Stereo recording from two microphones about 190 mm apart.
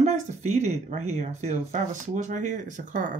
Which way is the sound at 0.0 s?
35° right (ahead or behind).